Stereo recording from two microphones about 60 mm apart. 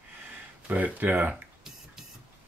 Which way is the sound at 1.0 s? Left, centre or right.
Right.